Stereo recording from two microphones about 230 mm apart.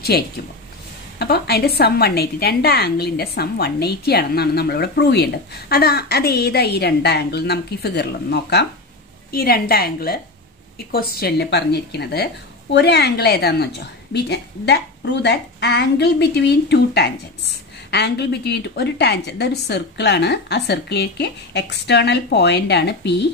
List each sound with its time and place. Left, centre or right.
0.1 s a woman's voice: left